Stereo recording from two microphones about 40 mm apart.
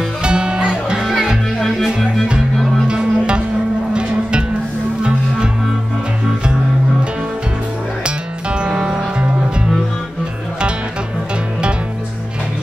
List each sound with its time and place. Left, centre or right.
0.2 s music: right
0.9 s music: centre
2.5 s music: centre
2.9 s music: right
8.0 s music: right